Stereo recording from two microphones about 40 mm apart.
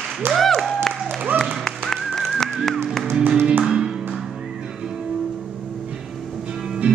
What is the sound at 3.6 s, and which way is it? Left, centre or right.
Music, centre.